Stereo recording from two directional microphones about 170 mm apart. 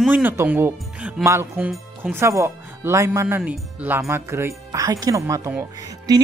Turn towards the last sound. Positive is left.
turn(degrees=-20)  # may be behind; listen again after turning